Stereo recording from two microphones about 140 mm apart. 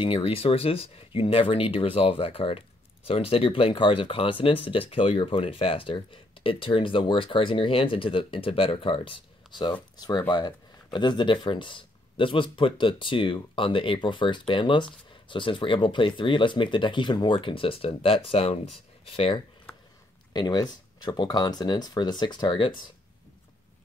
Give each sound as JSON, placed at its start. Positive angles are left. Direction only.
{"t": 0.0, "sound": "speech", "side_deg": 40}
{"t": 20.3, "sound": "speech", "side_deg": 30}